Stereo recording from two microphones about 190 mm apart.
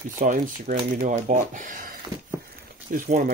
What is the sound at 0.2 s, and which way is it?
Speech, 40° right (ahead or behind).